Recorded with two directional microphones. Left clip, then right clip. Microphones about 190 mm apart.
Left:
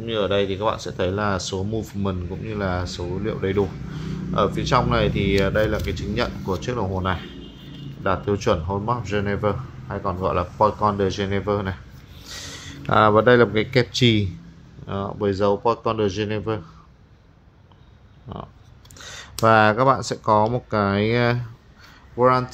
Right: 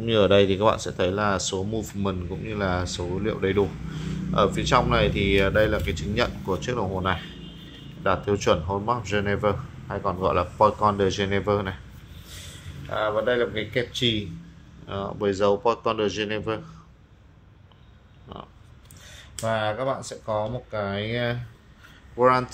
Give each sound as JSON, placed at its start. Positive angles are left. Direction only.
{"t": 0.0, "sound": "speech", "side_deg": -5}
{"t": 12.9, "sound": "speech", "side_deg": 30}
{"t": 14.9, "sound": "speech", "side_deg": 10}
{"t": 18.3, "sound": "speech", "side_deg": 15}
{"t": 18.9, "sound": "speech", "side_deg": 35}
{"t": 22.1, "sound": "speech", "side_deg": 10}